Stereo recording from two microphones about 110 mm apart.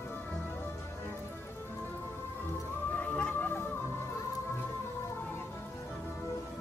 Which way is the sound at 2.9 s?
15° left (ahead or behind).